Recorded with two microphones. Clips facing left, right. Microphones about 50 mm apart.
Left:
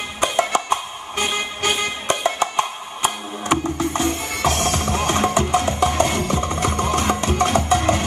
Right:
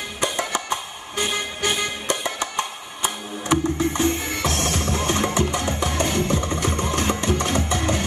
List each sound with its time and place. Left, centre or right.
0.2 s music: left